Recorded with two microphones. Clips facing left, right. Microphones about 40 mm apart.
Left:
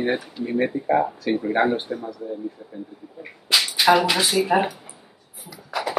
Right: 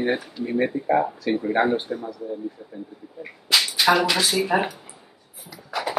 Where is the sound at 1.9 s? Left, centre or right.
Centre.